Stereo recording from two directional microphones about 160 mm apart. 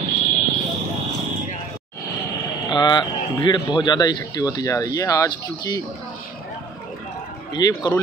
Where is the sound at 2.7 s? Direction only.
25° left (ahead or behind).